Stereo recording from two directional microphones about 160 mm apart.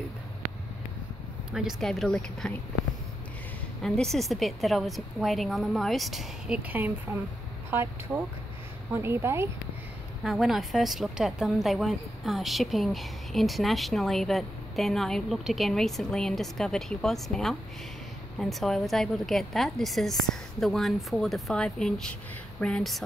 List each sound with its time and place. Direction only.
1.5 s a woman's voice: 5° right (ahead or behind)
3.8 s a woman's voice: 5° left (ahead or behind); by 9.5 s 15° right (ahead or behind)
10.2 s a woman's voice: centre (ahead or behind)